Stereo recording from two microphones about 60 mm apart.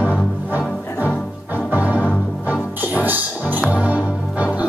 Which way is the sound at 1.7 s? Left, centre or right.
Right.